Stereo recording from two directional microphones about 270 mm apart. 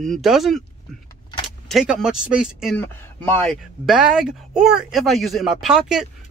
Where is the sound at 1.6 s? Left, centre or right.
Centre.